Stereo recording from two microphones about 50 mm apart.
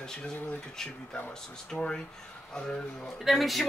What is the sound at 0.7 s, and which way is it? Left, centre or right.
Speech, centre.